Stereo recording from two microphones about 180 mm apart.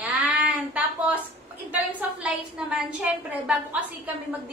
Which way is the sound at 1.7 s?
10° right (ahead or behind).